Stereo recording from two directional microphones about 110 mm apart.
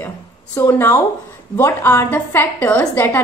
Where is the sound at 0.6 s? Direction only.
20° left (ahead or behind).